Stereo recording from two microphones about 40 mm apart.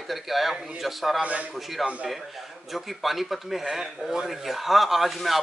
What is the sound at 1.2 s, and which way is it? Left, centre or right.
Speech, right.